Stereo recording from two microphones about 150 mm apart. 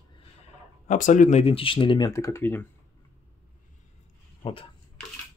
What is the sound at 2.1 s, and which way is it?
Speech, 20° left (ahead or behind).